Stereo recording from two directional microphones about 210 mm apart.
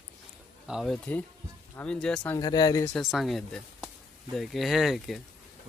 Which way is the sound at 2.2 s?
15° left (ahead or behind).